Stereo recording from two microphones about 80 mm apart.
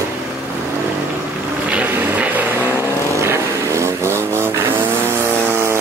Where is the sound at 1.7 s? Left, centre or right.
Centre.